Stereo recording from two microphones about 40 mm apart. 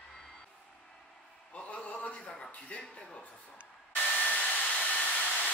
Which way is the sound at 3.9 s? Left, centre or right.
Left.